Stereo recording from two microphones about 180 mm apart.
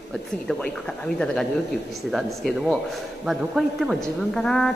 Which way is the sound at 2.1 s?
Centre (ahead or behind).